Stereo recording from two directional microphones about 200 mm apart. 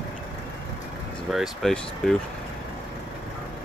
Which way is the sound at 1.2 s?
Centre (ahead or behind).